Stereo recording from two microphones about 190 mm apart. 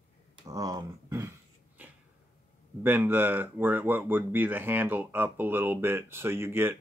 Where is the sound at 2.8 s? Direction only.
10° right (ahead or behind).